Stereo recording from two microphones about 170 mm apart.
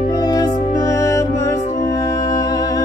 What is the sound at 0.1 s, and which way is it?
Music, 20° left (ahead or behind).